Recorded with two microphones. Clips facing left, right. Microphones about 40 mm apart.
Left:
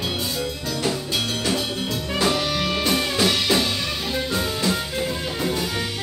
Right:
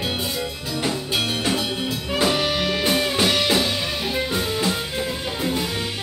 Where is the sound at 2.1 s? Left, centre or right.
Centre.